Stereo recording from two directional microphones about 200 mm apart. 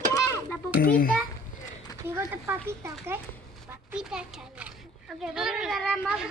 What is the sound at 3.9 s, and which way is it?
Speech, 5° right (ahead or behind).